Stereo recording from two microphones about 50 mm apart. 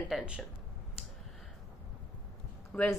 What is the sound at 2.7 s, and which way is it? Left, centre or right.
Speech, centre.